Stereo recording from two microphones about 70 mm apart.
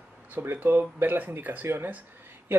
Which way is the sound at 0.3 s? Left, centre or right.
Right.